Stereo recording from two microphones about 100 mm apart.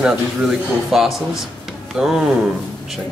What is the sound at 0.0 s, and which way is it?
Speech, 5° right (ahead or behind).